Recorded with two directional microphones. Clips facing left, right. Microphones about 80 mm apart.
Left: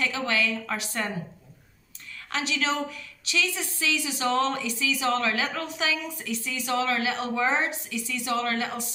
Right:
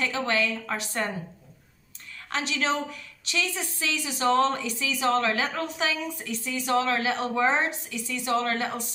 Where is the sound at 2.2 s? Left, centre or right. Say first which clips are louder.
Even; right.